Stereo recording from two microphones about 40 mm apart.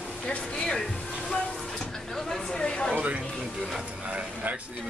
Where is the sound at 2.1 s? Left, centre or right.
Centre.